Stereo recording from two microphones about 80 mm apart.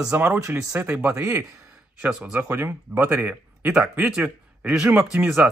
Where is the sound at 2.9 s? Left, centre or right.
Right.